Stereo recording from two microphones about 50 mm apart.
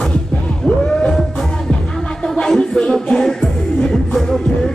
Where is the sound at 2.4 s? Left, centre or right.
Centre.